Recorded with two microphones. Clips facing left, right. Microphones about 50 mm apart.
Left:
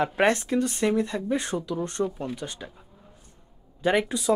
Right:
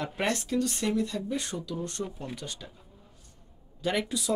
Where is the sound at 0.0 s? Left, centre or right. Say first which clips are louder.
Left 8 dB; left.